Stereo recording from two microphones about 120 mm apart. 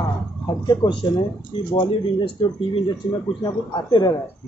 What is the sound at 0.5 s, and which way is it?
Speech, 40° left (ahead or behind).